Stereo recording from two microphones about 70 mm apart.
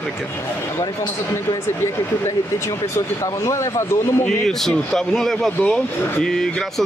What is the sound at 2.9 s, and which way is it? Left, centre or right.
Speech, left.